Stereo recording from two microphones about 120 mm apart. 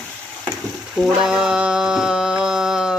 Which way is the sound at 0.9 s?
5° right (ahead or behind).